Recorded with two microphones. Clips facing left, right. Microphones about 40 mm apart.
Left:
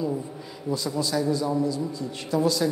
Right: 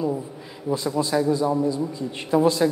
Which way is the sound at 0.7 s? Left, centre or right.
Right.